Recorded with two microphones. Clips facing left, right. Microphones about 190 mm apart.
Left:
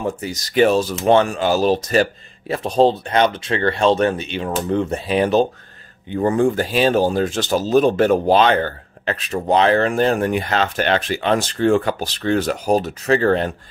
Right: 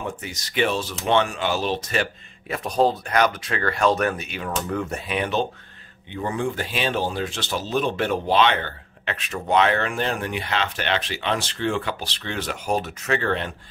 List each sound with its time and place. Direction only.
0.0 s speech: 40° left (ahead or behind)